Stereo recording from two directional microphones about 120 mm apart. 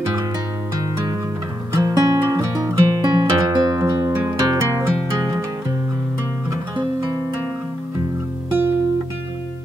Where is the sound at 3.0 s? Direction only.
35° right (ahead or behind).